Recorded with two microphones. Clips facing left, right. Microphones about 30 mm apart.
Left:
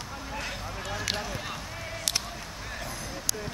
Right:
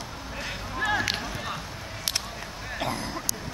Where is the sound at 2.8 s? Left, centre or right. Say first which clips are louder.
Right 9 dB; right.